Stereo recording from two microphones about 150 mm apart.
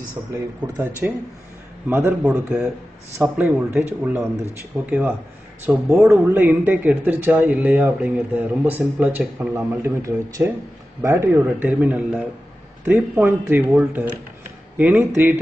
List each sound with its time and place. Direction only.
0.7 s speech: 15° right (ahead or behind)